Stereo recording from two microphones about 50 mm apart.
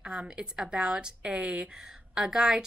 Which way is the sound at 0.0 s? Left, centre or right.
Centre.